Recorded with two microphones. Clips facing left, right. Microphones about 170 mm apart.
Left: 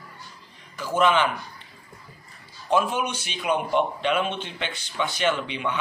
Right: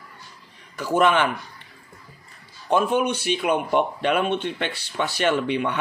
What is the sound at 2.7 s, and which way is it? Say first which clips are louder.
Speech: right 3 dB; 55° right (ahead or behind).